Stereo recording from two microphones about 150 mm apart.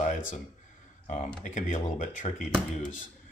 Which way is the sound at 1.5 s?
55° left (ahead or behind).